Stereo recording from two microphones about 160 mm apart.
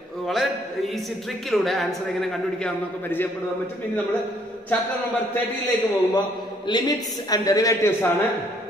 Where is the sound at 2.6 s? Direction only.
10° left (ahead or behind).